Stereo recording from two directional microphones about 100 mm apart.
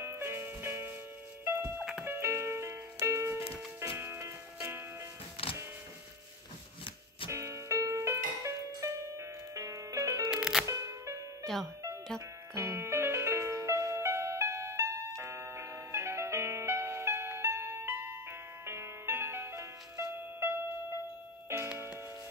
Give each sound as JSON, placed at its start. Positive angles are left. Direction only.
{"t": 0.0, "sound": "music", "side_deg": -25}
{"t": 7.2, "sound": "music", "side_deg": -30}
{"t": 10.3, "sound": "music", "side_deg": -5}
{"t": 10.7, "sound": "music", "side_deg": -30}